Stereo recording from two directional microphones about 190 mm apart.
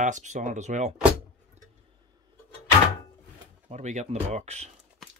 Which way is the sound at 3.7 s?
40° right (ahead or behind).